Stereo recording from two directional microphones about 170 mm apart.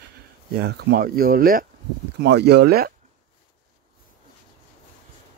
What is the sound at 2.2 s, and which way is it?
Speech, 80° right.